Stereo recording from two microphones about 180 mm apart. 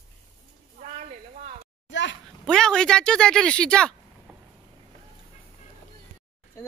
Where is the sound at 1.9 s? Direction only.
85° left.